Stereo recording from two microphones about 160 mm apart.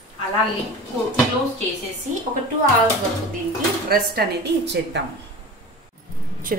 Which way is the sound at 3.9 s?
85° right.